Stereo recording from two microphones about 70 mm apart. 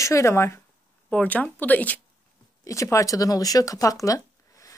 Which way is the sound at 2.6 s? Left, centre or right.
Left.